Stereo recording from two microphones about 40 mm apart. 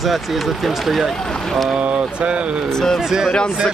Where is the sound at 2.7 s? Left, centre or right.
Centre.